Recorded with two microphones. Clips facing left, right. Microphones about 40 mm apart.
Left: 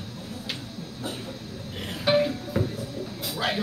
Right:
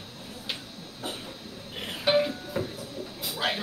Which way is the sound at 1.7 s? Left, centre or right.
Centre.